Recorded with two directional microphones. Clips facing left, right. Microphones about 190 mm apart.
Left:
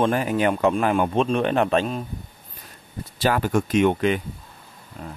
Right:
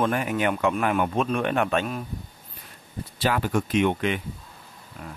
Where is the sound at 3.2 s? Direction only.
45° left (ahead or behind).